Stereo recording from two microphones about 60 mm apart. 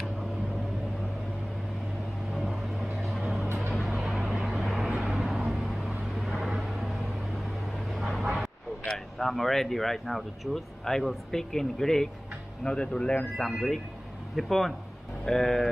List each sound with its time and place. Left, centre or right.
2.4 s vehicle: centre
4.2 s vehicle: centre
4.6 s vehicle: centre
7.9 s vehicle: centre
8.8 s speech: centre
14.3 s speech: centre